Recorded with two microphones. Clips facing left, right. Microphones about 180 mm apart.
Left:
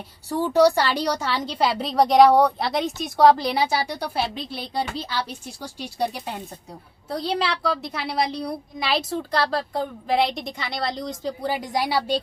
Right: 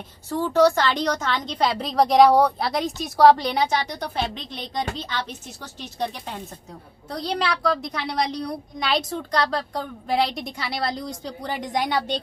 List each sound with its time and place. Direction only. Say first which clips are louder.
0.3 s a woman's voice: left 1 dB; 15° left (ahead or behind)